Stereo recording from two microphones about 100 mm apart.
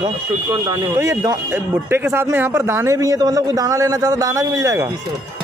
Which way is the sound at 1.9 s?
20° right (ahead or behind).